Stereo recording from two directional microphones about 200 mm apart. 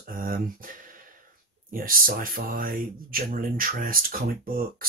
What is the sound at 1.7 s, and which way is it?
Speech, 45° right (ahead or behind).